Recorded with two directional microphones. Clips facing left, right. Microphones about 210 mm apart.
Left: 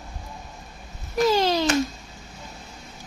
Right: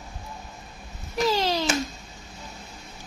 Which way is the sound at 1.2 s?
50° left (ahead or behind).